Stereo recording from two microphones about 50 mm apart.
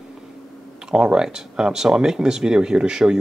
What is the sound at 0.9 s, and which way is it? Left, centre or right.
Speech, centre.